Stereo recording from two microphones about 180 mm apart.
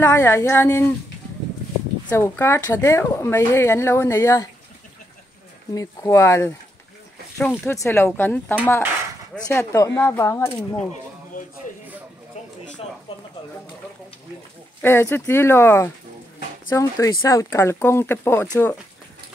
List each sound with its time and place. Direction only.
0.0 s speech: 15° left (ahead or behind)
2.0 s speech: 15° left (ahead or behind)
5.8 s speech: 15° left (ahead or behind)
14.8 s speech: 10° left (ahead or behind)